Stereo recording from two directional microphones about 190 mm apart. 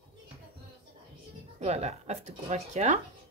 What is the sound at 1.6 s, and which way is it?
A woman's voice, 35° right (ahead or behind).